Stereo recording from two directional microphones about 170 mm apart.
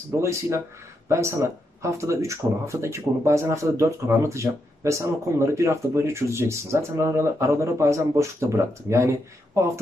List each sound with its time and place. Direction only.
0.2 s speech: 15° right (ahead or behind)